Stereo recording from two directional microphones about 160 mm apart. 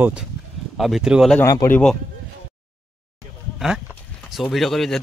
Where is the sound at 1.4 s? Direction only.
15° left (ahead or behind).